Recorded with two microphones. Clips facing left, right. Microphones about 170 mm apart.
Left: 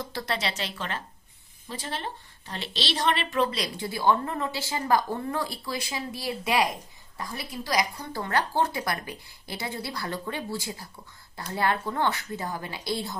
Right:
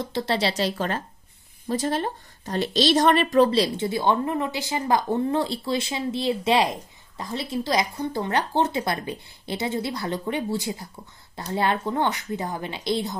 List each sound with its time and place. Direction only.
0.0 s a woman's voice: 25° right (ahead or behind)